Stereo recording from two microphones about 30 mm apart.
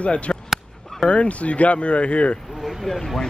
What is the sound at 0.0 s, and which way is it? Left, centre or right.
Speech, left.